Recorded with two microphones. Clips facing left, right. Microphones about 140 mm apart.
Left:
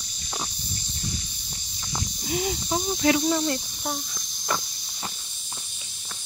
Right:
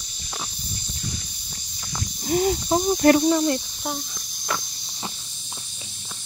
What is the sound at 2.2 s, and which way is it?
Speech, 45° right (ahead or behind).